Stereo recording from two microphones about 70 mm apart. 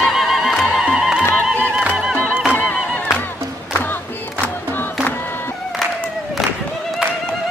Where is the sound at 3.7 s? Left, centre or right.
Left.